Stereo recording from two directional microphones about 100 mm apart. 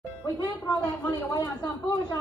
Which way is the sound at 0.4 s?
40° left (ahead or behind).